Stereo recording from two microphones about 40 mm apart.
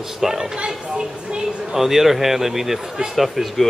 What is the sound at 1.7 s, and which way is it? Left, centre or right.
Speech, centre.